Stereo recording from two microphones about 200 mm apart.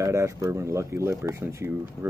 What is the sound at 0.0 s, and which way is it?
Speech, 15° right (ahead or behind).